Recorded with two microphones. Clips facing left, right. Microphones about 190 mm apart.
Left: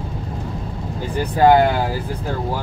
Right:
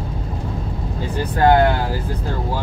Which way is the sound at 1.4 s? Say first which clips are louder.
Left 1 dB; 15° left (ahead or behind).